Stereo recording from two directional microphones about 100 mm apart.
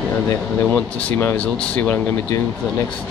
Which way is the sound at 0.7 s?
20° left (ahead or behind).